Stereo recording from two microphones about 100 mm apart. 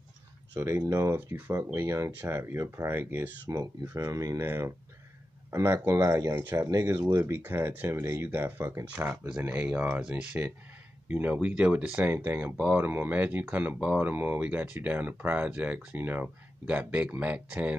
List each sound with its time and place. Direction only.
0.6 s speech: 25° right (ahead or behind)
3.4 s speech: 40° right (ahead or behind)
6.9 s speech: 20° right (ahead or behind)